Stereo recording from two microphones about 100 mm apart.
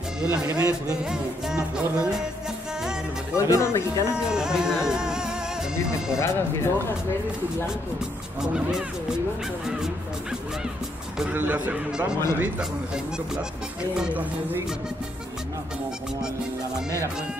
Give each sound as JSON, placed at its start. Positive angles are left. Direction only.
{"t": 0.5, "sound": "speech", "side_deg": -35}
{"t": 1.0, "sound": "music", "side_deg": -5}
{"t": 3.3, "sound": "speech", "side_deg": 30}
{"t": 4.3, "sound": "music", "side_deg": -5}
{"t": 6.1, "sound": "speech", "side_deg": 25}
{"t": 8.4, "sound": "music", "side_deg": -5}
{"t": 11.3, "sound": "music", "side_deg": -15}